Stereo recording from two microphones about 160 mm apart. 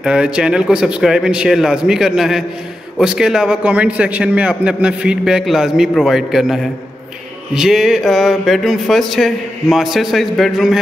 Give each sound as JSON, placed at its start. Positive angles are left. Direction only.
{"t": 0.0, "sound": "a man's voice", "side_deg": -5}